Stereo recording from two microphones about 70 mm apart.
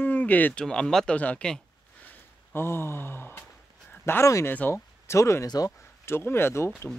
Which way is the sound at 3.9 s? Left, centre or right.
Left.